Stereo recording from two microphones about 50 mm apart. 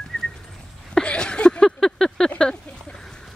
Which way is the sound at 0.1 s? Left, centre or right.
Centre.